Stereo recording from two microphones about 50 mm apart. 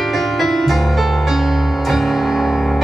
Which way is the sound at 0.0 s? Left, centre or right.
Centre.